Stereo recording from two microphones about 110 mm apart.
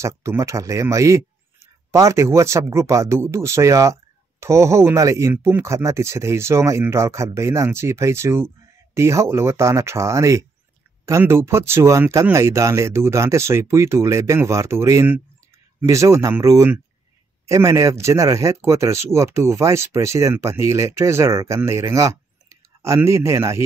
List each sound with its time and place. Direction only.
0.0 s speech: 25° right (ahead or behind)